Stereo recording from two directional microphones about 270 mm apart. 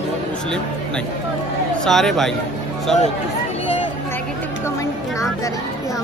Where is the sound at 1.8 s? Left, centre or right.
Centre.